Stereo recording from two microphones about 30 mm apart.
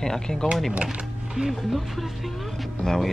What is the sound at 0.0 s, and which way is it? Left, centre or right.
Speech, centre.